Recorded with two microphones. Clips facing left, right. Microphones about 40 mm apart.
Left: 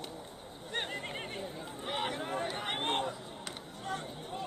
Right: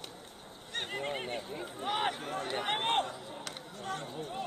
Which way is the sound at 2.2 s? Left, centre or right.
Centre.